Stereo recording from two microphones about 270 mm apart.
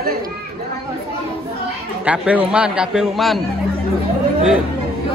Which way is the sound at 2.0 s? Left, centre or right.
Centre.